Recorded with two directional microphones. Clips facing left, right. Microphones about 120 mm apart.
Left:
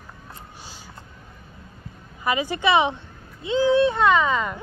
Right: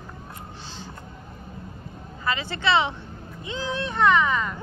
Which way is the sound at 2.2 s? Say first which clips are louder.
Left 3 dB; 15° left (ahead or behind).